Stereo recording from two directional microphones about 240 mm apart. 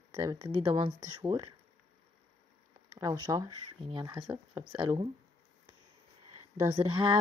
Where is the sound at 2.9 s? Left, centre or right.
Centre.